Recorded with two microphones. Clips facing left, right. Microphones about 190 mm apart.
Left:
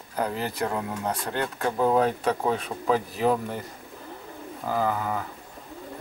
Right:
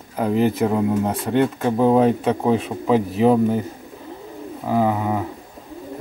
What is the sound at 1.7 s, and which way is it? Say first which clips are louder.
Speech: right 4 dB; 20° right (ahead or behind).